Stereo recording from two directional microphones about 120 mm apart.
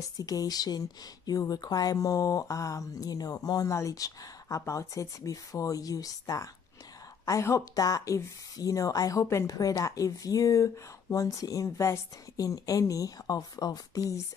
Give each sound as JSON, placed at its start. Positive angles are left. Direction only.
{"t": 0.0, "sound": "speech", "side_deg": 30}